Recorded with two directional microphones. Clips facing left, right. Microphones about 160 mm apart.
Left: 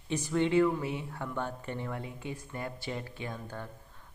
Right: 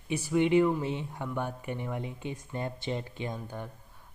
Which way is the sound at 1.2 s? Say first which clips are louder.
Right 1 dB; 10° right (ahead or behind).